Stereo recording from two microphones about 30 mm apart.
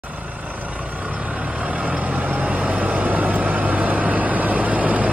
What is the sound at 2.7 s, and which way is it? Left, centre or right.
Vehicle, right.